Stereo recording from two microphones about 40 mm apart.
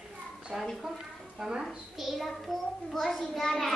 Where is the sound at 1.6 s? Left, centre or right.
Centre.